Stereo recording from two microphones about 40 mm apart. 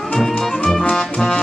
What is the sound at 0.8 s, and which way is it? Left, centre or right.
Music, left.